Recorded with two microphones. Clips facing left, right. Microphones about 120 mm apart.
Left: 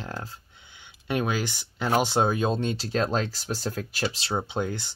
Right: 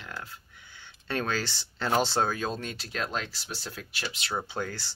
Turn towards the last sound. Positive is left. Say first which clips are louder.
# left 5 dB
turn(degrees=20)  # may be behind; listen again after turning